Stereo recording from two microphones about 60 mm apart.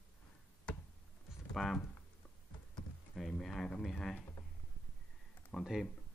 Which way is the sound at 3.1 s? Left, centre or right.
Centre.